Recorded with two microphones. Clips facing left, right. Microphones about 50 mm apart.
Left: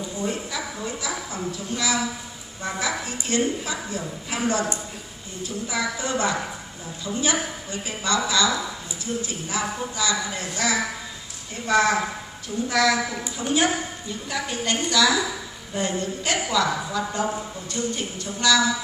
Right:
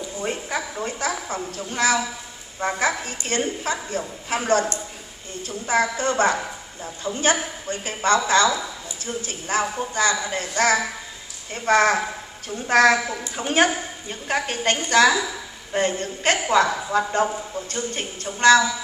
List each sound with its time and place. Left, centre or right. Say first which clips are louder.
0.2 s a sound: right 2 dB; right
2.6 s a woman's voice: right 4 dB; right
7.1 s a woman's voice: right 1 dB; centre
7.7 s a man's voice: right 5 dB; right
14.0 s a man's voice: right 4 dB; right